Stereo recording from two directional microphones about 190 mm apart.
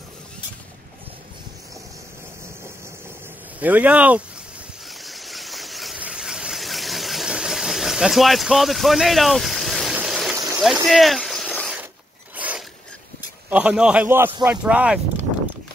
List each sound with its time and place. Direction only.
3.5 s a man's voice: 10° right (ahead or behind)
5.0 s vehicle: centre (ahead or behind)
10.3 s a sound: 15° right (ahead or behind)
10.6 s a sound: centre (ahead or behind)
12.4 s mechanisms: 10° right (ahead or behind)
13.5 s a man's voice: 5° right (ahead or behind)